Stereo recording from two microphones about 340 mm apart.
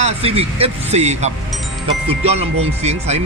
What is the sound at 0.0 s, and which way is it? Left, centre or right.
Speech, centre.